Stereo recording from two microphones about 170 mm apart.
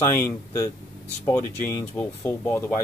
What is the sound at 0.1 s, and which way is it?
Speech, 15° left (ahead or behind).